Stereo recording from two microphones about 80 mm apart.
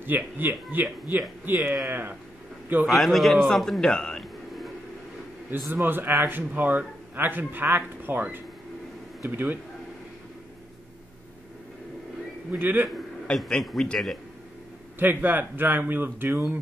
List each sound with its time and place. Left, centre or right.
0.0 s a man's voice: right
2.9 s a man's voice: centre
5.7 s a man's voice: right
12.4 s a man's voice: right
12.8 s a sound: centre
13.5 s a man's voice: centre
15.0 s a man's voice: right